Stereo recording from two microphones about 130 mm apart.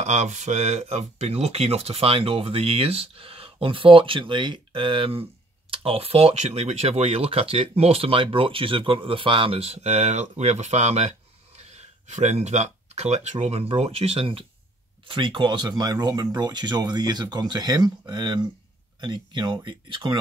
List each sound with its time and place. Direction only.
0.0 s speech: 60° right (ahead or behind); by 20.2 s 35° right (ahead or behind)